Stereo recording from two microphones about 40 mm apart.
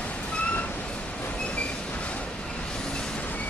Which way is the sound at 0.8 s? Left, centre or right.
Left.